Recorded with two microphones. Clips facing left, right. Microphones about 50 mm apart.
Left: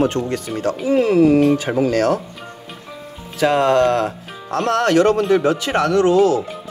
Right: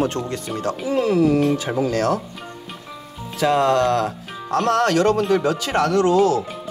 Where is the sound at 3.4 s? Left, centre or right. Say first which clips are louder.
Left 2 dB; left.